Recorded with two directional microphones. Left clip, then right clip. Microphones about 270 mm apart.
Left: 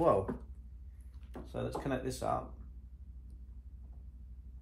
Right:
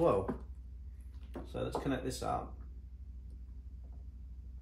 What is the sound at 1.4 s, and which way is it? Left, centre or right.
Speech, centre.